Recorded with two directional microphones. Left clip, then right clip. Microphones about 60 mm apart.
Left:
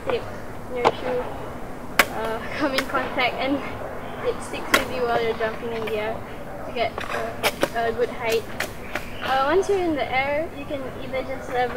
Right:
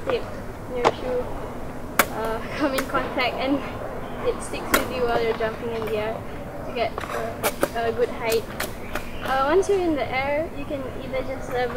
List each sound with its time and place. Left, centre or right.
0.1 s speech: centre
2.0 s speech: centre